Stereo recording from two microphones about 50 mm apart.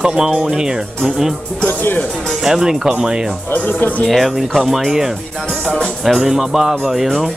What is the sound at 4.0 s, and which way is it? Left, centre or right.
Speech, centre.